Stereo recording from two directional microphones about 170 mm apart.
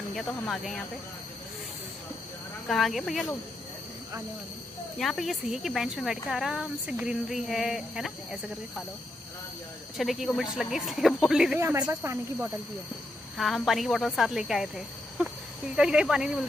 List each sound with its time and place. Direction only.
0.1 s speech: centre (ahead or behind)
2.7 s speech: centre (ahead or behind)
4.9 s speech: centre (ahead or behind)
9.9 s speech: centre (ahead or behind)
11.6 s speech: 15° right (ahead or behind)
13.4 s speech: centre (ahead or behind)
15.7 s speech: 5° right (ahead or behind)